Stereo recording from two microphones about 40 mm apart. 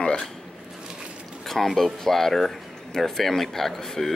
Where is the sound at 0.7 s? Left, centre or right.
Centre.